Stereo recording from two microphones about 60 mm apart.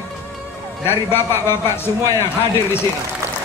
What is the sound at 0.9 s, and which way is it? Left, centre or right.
Speech, left.